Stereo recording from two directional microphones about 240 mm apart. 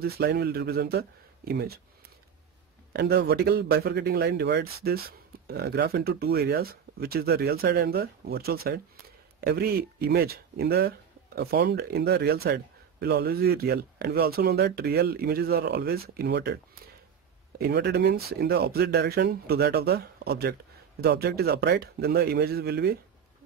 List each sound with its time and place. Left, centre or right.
0.0 s speech: right
2.9 s speech: right